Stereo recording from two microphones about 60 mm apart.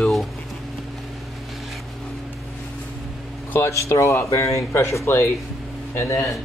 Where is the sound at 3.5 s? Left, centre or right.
Left.